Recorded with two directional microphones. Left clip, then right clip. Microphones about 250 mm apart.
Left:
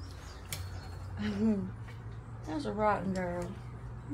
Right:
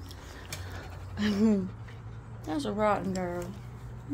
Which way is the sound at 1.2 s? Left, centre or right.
Right.